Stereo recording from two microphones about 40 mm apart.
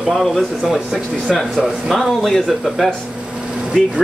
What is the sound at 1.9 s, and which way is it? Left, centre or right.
A man's voice, centre.